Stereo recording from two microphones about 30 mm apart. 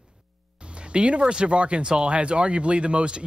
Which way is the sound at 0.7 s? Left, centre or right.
Right.